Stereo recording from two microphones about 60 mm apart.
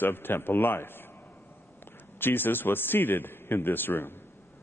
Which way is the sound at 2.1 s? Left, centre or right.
Left.